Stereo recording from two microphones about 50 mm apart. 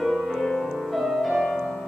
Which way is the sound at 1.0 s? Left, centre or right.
Centre.